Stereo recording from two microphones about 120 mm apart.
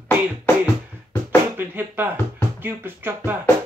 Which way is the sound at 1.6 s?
15° right (ahead or behind).